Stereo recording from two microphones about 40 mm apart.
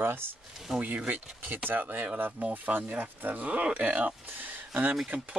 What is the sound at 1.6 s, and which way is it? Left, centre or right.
Speech, right.